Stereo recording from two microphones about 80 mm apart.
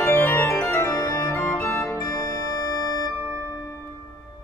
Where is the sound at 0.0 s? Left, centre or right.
Left.